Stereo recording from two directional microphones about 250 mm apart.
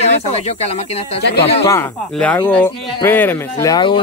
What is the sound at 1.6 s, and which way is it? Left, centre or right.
Speech, centre.